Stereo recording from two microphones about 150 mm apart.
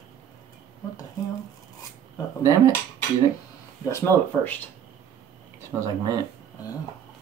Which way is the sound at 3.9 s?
15° left (ahead or behind).